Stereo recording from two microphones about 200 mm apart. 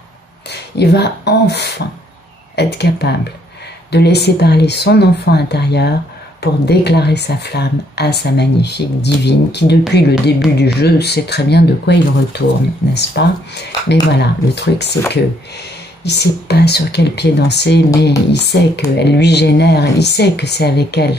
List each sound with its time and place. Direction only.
0.5 s speech: 55° left (ahead or behind)
16.0 s speech: 55° left (ahead or behind)